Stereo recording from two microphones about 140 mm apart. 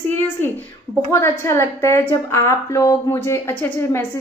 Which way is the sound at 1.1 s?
20° left (ahead or behind).